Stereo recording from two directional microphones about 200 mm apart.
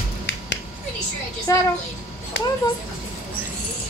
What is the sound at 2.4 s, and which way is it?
Speech, 65° left (ahead or behind).